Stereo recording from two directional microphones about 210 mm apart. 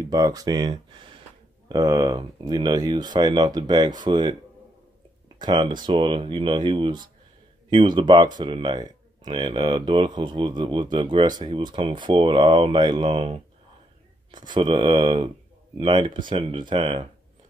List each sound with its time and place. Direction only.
0.0 s speech: 15° right (ahead or behind)
5.4 s speech: 20° right (ahead or behind)